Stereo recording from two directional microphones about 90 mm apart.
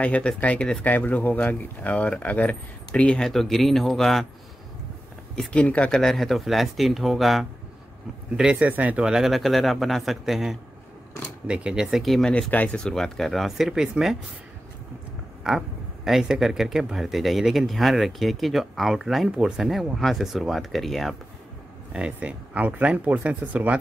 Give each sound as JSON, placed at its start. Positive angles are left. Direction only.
{"t": 0.0, "sound": "speech", "side_deg": 15}
{"t": 5.3, "sound": "speech", "side_deg": 10}
{"t": 8.4, "sound": "speech", "side_deg": -15}
{"t": 15.4, "sound": "speech", "side_deg": -5}
{"t": 21.9, "sound": "speech", "side_deg": -15}